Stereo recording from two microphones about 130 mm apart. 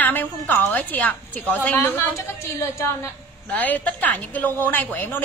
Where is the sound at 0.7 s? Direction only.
10° left (ahead or behind).